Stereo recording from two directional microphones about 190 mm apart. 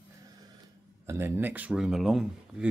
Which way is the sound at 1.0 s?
15° right (ahead or behind).